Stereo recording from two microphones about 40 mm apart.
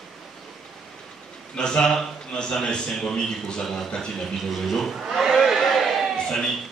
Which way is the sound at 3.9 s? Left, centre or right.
Centre.